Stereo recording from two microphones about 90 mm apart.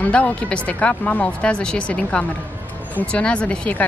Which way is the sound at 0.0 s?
15° left (ahead or behind).